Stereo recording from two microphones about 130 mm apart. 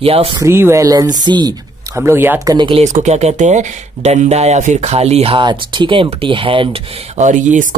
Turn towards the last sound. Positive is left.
turn(degrees=-70)  # may be behind; listen again after turning